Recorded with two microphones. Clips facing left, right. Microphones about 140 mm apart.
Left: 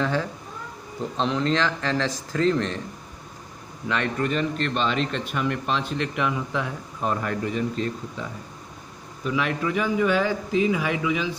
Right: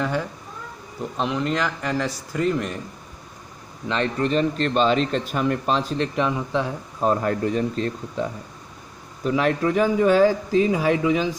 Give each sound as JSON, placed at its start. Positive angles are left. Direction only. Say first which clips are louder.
{"t": 0.0, "sound": "speech", "louder": "even", "side_deg": -10}
{"t": 3.9, "sound": "speech", "louder": "right 3 dB", "side_deg": -30}